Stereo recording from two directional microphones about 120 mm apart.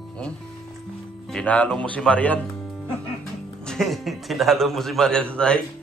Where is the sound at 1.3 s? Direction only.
10° left (ahead or behind).